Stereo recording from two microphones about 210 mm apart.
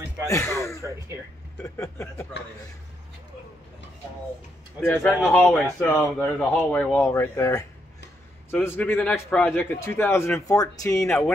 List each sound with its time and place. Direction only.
0.3 s speech: 15° left (ahead or behind)
1.8 s speech: 10° left (ahead or behind)
4.7 s speech: 5° left (ahead or behind)
11.0 s speech: centre (ahead or behind)